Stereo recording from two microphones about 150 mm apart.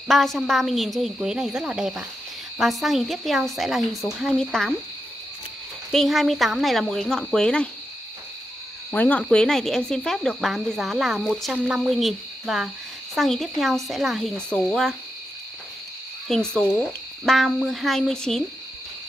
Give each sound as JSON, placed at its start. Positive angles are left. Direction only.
{"t": 0.1, "sound": "speech", "side_deg": 0}
{"t": 5.9, "sound": "speech", "side_deg": 0}
{"t": 8.9, "sound": "speech", "side_deg": 10}
{"t": 16.3, "sound": "speech", "side_deg": 5}